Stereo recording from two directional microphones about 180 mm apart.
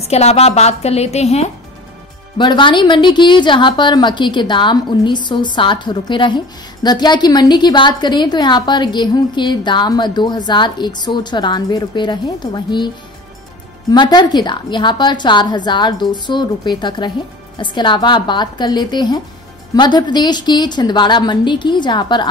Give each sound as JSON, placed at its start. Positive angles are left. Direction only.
{"t": 0.1, "sound": "a woman's voice", "side_deg": 35}
{"t": 2.3, "sound": "a woman's voice", "side_deg": 25}